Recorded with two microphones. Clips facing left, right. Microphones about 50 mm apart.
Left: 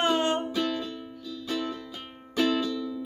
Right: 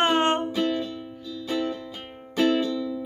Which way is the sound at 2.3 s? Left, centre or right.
Right.